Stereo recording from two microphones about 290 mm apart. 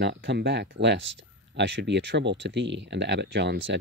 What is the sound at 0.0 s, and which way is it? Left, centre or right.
Speech, right.